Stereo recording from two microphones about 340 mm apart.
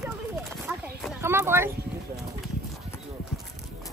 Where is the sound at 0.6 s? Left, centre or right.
Centre.